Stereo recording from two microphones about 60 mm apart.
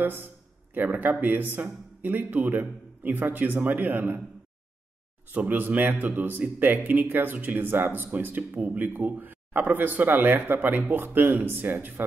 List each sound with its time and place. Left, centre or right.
0.0 s a man's voice: right
5.3 s a man's voice: right